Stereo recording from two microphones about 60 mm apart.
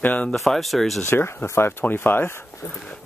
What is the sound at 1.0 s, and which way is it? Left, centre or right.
Speech, left.